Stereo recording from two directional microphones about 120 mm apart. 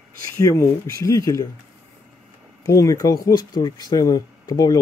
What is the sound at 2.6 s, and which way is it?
Speech, 25° left (ahead or behind).